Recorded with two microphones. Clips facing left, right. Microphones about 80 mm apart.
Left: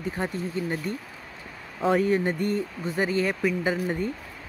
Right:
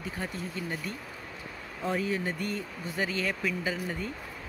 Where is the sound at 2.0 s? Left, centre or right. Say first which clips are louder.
Left 7 dB; left.